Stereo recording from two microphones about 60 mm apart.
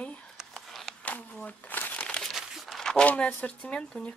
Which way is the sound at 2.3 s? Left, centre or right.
Centre.